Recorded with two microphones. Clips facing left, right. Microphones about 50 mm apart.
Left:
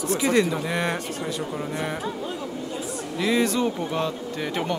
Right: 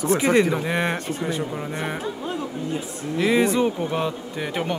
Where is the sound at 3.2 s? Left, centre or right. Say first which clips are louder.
Right 3 dB; right.